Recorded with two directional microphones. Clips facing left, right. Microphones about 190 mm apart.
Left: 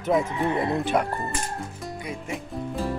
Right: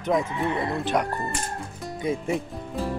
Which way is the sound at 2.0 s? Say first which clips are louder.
Right 9 dB; 25° right (ahead or behind).